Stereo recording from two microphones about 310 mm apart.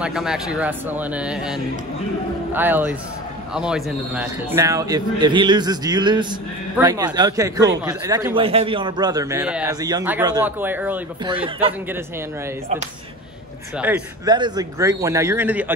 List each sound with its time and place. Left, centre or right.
0.0 s a man's voice: centre
11.3 s a man's voice: centre
13.7 s a man's voice: centre